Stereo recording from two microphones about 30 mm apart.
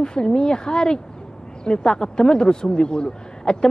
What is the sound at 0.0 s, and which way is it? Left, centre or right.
Speech, left.